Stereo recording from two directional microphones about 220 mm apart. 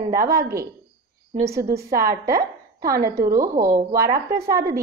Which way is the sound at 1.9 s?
45° right (ahead or behind).